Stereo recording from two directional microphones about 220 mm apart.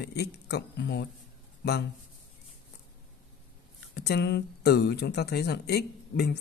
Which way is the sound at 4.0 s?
50° left (ahead or behind).